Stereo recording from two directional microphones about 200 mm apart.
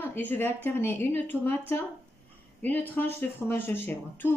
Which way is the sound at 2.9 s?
10° left (ahead or behind).